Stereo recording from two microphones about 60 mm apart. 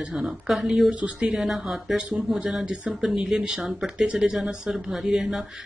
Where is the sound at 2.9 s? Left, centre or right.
Centre.